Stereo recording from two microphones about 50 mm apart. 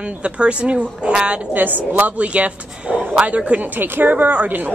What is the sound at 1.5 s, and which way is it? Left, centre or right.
A woman's voice, right.